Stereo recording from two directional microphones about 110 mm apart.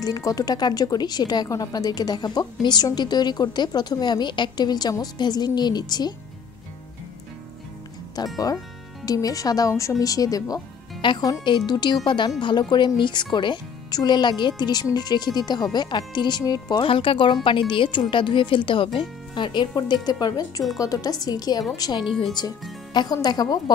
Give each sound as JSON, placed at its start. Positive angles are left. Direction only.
{"t": 0.0, "sound": "a woman's voice", "side_deg": 35}
{"t": 8.2, "sound": "a woman's voice", "side_deg": 40}
{"t": 16.8, "sound": "a woman's voice", "side_deg": 55}